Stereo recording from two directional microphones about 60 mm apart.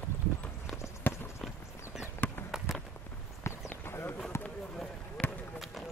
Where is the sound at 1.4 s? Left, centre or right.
Centre.